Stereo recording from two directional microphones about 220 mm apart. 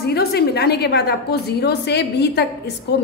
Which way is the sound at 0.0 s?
45° left (ahead or behind).